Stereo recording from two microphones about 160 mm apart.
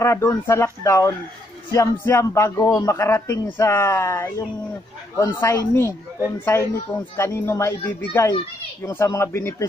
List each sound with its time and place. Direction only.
0.0 s a man's voice: 15° left (ahead or behind)